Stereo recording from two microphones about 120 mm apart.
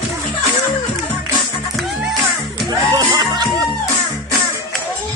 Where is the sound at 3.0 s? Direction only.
30° right (ahead or behind).